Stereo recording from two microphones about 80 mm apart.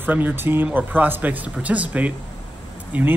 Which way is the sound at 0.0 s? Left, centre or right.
Right.